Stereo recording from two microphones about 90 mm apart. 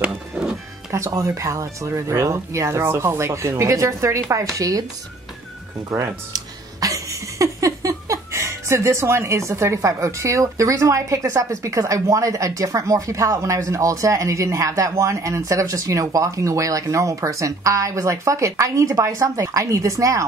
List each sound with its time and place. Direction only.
0.0 s music: 10° right (ahead or behind)
0.9 s speech: 35° right (ahead or behind)
5.9 s speech: 40° right (ahead or behind)